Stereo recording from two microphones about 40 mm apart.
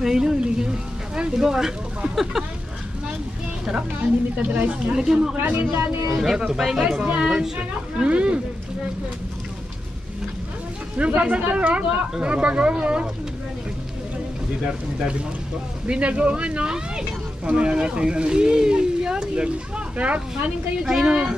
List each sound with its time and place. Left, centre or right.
0.0 s speech: centre
0.4 s a sound: right
3.7 s speech: right
4.9 s speech: centre
7.5 s speech: right
11.0 s speech: right
15.0 s speech: right
20.0 s speech: right
20.8 s speech: centre